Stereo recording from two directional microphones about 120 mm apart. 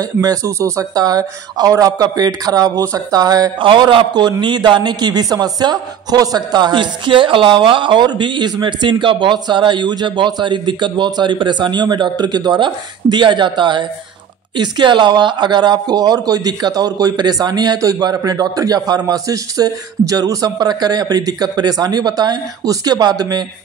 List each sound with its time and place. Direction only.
0.0 s a man's voice: 30° right (ahead or behind)
3.5 s a man's voice: 45° right (ahead or behind)